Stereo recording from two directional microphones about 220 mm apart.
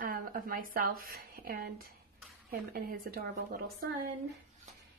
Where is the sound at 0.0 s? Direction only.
40° right (ahead or behind).